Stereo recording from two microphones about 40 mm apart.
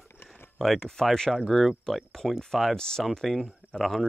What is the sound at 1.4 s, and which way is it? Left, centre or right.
Speech, centre.